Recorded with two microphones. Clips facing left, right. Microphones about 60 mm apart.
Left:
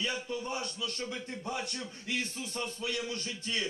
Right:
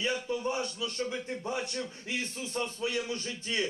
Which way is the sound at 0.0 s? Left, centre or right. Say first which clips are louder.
Right 4 dB; right.